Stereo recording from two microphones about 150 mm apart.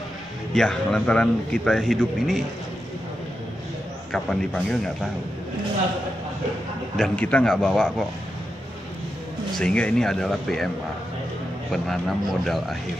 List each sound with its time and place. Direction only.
0.6 s a man's voice: 5° left (ahead or behind)
4.1 s a man's voice: centre (ahead or behind)
7.0 s a man's voice: 10° left (ahead or behind)
9.5 s a man's voice: 5° left (ahead or behind)
11.7 s a man's voice: centre (ahead or behind)